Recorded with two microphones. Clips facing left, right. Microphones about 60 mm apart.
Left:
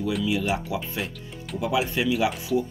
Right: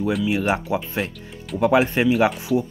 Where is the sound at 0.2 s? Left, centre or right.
Right.